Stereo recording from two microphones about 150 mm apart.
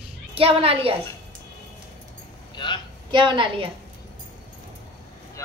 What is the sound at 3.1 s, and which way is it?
Speech, 30° right (ahead or behind).